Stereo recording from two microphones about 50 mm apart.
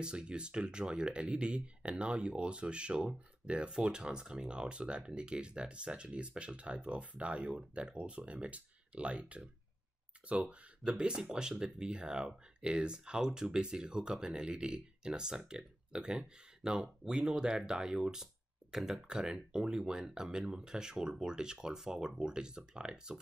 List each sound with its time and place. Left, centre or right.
0.0 s speech: centre